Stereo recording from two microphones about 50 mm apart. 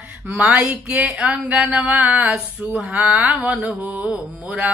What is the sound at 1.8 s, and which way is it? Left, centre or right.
Speech, right.